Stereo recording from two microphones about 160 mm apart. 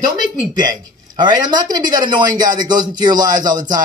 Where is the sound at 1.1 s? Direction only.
25° right (ahead or behind).